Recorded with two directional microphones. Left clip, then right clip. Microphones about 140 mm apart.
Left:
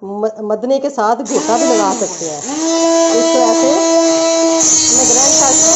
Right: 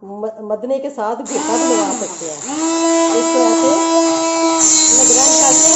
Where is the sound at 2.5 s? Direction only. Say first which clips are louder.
Left 3 dB; 15° right (ahead or behind).